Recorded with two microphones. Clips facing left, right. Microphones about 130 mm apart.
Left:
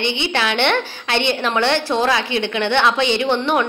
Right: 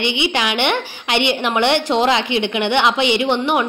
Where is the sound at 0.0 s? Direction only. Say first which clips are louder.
Right 1 dB; 15° right (ahead or behind).